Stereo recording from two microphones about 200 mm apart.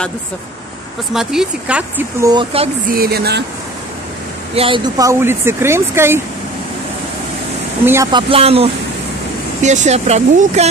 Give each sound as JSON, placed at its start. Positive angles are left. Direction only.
{"t": 1.1, "sound": "speech", "side_deg": -5}
{"t": 2.9, "sound": "speech", "side_deg": -50}
{"t": 4.6, "sound": "speech", "side_deg": -25}
{"t": 7.8, "sound": "speech", "side_deg": -10}
{"t": 8.1, "sound": "speech", "side_deg": -25}